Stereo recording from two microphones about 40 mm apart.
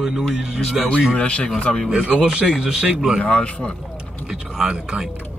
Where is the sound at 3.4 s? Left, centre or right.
Left.